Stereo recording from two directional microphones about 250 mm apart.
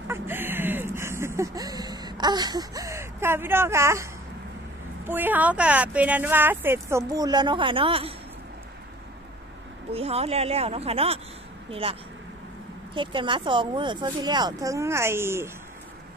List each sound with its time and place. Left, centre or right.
0.1 s a sound: centre
5.0 s speech: centre
9.9 s speech: right